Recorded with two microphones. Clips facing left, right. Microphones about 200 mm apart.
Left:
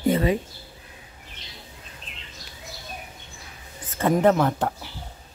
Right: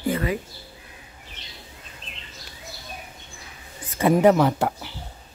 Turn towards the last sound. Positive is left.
turn(degrees=-5)  # may be behind; listen again after turning